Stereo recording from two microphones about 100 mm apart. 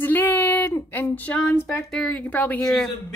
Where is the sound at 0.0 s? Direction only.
20° left (ahead or behind).